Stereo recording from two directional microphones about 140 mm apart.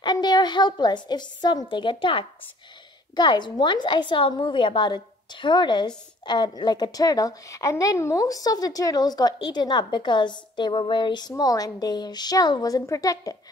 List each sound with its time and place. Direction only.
0.0 s a woman's voice: 30° left (ahead or behind)